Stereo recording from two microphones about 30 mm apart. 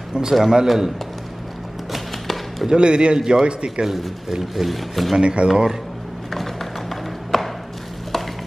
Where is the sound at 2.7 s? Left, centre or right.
Right.